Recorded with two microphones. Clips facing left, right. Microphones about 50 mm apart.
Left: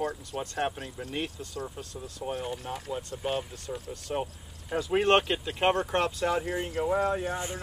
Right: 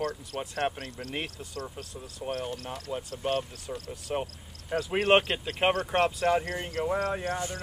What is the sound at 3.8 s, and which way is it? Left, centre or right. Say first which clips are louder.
Speech: even; centre.